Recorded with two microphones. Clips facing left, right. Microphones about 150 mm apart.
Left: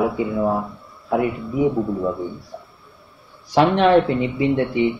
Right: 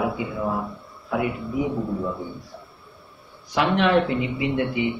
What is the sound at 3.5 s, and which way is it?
Speech, 35° left (ahead or behind).